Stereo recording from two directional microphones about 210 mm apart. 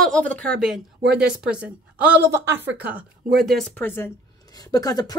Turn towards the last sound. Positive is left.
turn(degrees=15)  # may be behind; listen again after turning